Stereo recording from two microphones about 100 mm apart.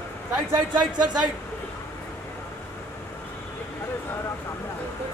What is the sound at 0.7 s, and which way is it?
Speech, 45° right (ahead or behind).